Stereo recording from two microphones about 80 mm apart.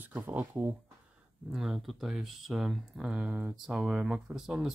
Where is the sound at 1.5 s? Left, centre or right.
Centre.